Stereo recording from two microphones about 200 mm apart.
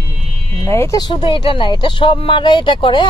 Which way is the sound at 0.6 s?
15° left (ahead or behind).